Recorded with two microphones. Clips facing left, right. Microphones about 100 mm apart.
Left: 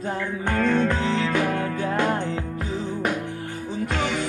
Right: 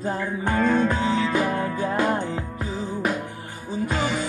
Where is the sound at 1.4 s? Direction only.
30° right (ahead or behind).